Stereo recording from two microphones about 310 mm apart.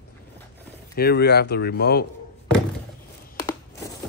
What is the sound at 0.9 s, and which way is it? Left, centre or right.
Speech, left.